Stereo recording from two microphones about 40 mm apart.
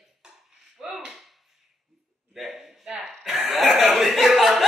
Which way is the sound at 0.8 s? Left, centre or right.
Centre.